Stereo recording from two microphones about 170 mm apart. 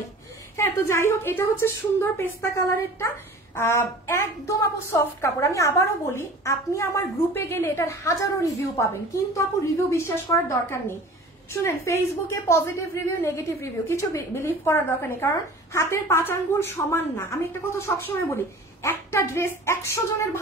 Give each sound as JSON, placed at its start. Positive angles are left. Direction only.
{"t": 0.6, "sound": "a woman's voice", "side_deg": 15}
{"t": 3.5, "sound": "a woman's voice", "side_deg": 15}